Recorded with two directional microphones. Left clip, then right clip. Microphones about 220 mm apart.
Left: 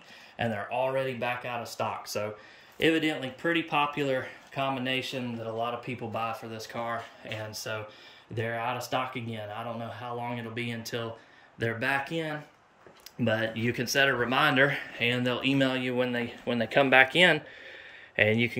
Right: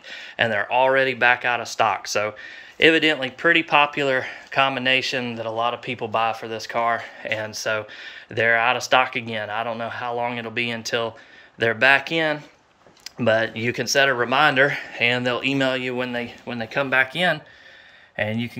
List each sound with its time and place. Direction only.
0.1 s speech: 5° right (ahead or behind)